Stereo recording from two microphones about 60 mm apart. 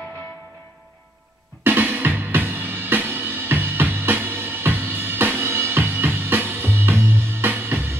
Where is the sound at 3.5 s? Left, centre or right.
Right.